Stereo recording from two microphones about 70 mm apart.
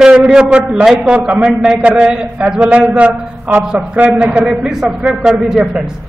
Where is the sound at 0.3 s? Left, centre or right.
Centre.